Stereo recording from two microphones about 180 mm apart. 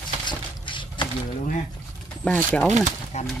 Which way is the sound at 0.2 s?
25° left (ahead or behind).